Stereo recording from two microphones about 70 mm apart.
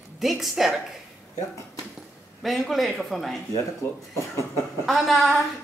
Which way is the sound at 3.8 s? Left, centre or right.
Left.